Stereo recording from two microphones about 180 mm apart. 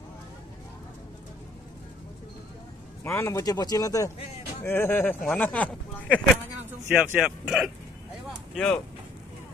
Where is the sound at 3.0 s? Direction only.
15° left (ahead or behind).